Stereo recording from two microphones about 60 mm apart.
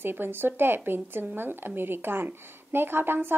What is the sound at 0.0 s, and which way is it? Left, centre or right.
A woman's voice, right.